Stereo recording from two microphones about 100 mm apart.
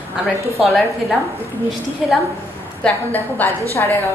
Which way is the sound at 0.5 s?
Centre (ahead or behind).